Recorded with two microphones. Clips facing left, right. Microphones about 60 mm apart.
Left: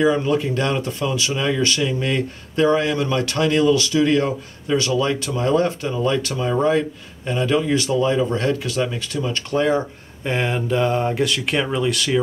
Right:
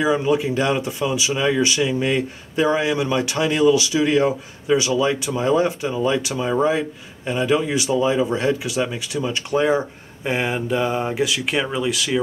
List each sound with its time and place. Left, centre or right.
0.0 s speech: centre